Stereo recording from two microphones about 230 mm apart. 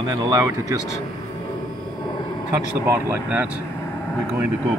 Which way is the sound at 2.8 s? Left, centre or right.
Centre.